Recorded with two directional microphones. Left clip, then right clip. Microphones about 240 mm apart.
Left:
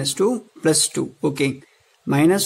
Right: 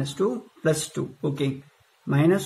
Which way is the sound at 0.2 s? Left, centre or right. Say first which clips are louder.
Left 4 dB; left.